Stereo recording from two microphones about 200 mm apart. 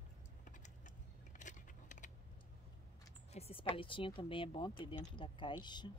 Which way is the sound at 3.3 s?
30° left (ahead or behind).